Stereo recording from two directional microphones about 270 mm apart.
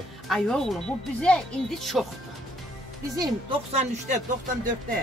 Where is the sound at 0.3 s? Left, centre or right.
Centre.